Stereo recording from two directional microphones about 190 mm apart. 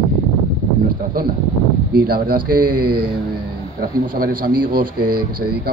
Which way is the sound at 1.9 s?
50° right (ahead or behind).